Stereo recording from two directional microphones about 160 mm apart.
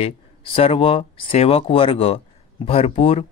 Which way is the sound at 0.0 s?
35° left (ahead or behind).